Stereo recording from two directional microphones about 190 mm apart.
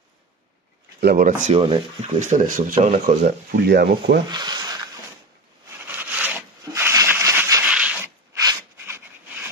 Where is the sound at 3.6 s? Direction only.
55° right (ahead or behind).